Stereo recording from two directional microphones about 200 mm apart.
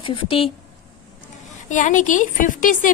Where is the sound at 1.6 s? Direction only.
40° left (ahead or behind).